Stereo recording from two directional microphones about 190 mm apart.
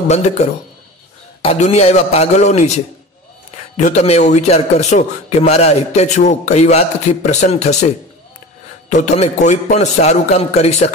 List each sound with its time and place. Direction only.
0.1 s a man's voice: 35° left (ahead or behind)